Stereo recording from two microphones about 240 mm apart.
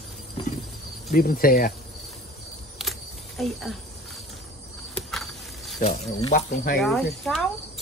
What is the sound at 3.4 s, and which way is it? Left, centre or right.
Speech, centre.